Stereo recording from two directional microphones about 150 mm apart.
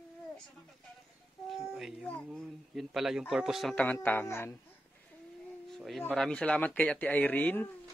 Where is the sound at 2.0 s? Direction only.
10° left (ahead or behind).